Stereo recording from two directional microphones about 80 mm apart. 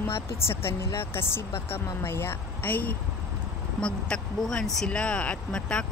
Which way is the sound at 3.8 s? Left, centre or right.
Centre.